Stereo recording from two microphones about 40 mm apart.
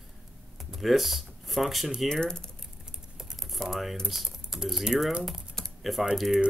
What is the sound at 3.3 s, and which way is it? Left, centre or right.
Speech, centre.